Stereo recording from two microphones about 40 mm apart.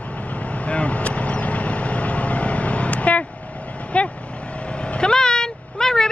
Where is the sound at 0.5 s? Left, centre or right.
Left.